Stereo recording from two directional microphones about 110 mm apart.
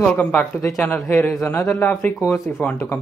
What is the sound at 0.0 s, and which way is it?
Speech, 10° left (ahead or behind).